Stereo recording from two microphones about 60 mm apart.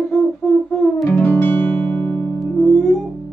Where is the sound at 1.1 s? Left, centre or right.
Left.